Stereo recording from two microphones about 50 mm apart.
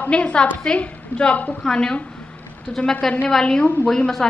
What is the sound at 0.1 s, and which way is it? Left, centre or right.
A woman's voice, left.